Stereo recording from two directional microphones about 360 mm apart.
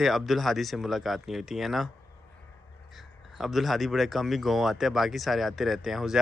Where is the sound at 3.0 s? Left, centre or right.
Centre.